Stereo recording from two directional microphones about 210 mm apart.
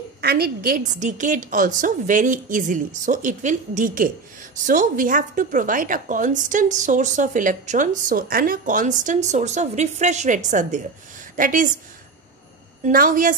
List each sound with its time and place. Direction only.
0.2 s a woman's voice: 50° right (ahead or behind)
12.8 s a woman's voice: 40° right (ahead or behind)